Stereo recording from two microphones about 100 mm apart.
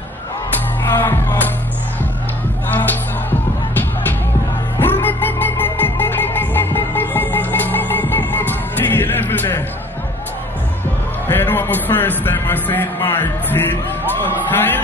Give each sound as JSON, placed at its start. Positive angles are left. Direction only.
{"t": 0.8, "sound": "music", "side_deg": 20}
{"t": 2.7, "sound": "music", "side_deg": 20}
{"t": 11.2, "sound": "music", "side_deg": 20}